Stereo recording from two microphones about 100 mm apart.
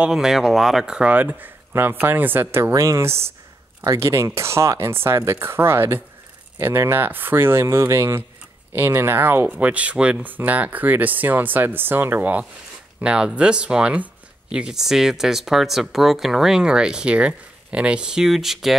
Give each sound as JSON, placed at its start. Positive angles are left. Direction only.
{"t": 0.0, "sound": "speech", "side_deg": -5}
{"t": 2.7, "sound": "speech", "side_deg": -30}